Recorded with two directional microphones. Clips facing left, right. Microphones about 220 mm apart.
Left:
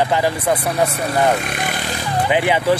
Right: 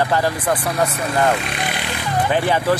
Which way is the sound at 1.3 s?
45° left (ahead or behind).